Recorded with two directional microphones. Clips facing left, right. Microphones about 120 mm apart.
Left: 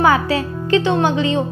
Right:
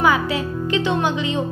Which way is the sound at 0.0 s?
35° left (ahead or behind).